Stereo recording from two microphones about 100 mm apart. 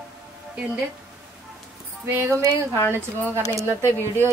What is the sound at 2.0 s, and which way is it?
Speech, 25° right (ahead or behind).